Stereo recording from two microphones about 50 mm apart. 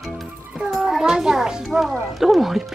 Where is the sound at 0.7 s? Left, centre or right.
Centre.